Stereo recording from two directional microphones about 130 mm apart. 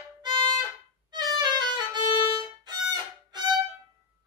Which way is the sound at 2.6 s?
35° right (ahead or behind).